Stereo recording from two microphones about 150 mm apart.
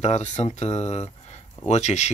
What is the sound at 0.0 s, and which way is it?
Speech, 50° left (ahead or behind).